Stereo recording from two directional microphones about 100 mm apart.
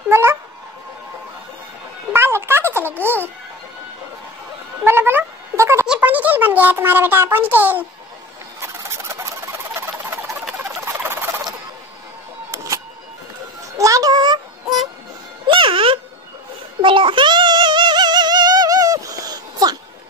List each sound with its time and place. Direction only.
0.1 s cat: 25° right (ahead or behind)
2.1 s music: 25° right (ahead or behind)
4.8 s cat: 25° right (ahead or behind)
5.9 s a sound: 15° right (ahead or behind)
10.8 s rodents: 20° right (ahead or behind)
12.4 s vehicle: 35° right (ahead or behind)
13.7 s a sound: 35° right (ahead or behind)
15.4 s music: 55° right (ahead or behind)
16.8 s female singing: 55° right (ahead or behind); by 19.8 s 40° right (ahead or behind)